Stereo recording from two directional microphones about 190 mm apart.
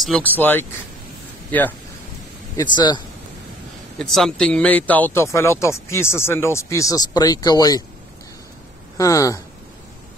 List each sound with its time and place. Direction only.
0.0 s speech: 5° left (ahead or behind)
2.5 s speech: 25° left (ahead or behind)
4.0 s speech: centre (ahead or behind); by 7.8 s 20° left (ahead or behind)
8.9 s speech: 15° left (ahead or behind)